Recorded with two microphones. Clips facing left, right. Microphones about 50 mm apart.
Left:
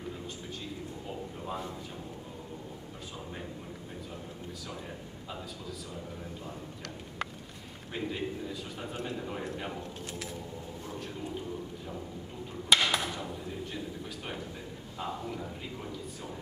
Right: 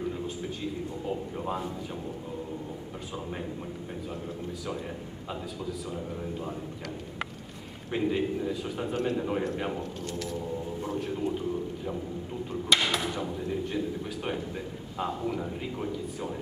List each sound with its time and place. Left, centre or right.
7.9 s a man's voice: centre
12.6 s a sound: centre
15.0 s a man's voice: centre